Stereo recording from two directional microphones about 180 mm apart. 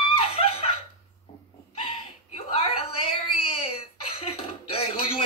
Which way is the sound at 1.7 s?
30° left (ahead or behind).